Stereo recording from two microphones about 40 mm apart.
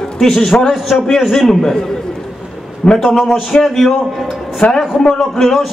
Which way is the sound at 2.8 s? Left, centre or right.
Left.